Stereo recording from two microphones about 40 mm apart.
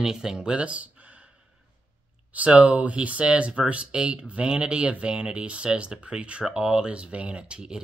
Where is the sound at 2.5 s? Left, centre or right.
Right.